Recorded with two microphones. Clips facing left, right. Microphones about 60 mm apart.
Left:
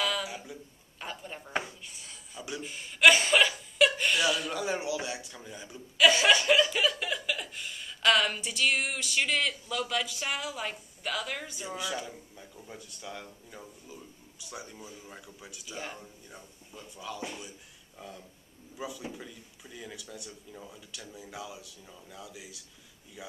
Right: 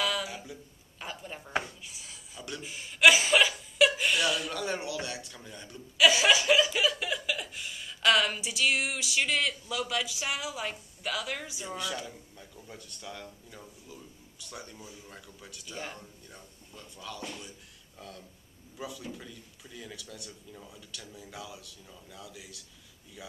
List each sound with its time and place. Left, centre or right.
0.0 s speech: centre